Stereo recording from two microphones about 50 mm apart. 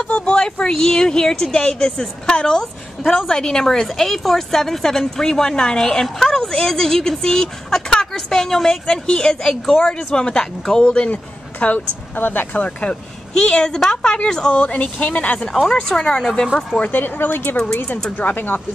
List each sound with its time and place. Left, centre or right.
0.2 s a woman's voice: centre
8.8 s a woman's voice: centre
12.2 s speech: left
13.4 s a woman's voice: centre
14.7 s speech: left
15.5 s a woman's voice: centre
16.8 s speech: left